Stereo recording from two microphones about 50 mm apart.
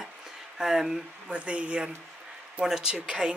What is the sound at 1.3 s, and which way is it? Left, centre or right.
Speech, right.